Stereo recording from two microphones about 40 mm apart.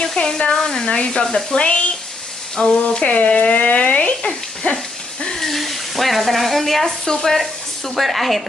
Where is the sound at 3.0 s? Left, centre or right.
Left.